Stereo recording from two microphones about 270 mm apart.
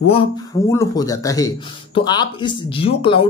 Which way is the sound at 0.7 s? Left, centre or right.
Centre.